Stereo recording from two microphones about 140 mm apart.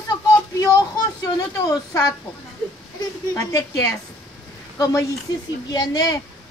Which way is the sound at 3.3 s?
25° left (ahead or behind).